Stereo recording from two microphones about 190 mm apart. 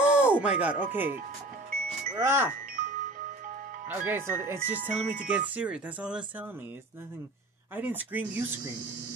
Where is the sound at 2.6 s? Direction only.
45° right (ahead or behind).